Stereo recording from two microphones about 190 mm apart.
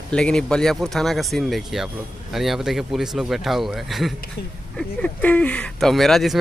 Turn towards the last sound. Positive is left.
turn(degrees=0)  # may be behind; listen again after turning